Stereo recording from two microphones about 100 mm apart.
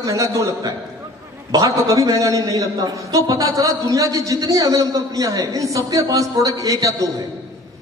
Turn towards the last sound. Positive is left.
turn(degrees=-35)  # may be behind; listen again after turning